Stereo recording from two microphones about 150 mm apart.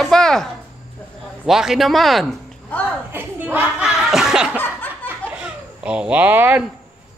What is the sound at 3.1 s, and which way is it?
Chuckle, 15° right (ahead or behind).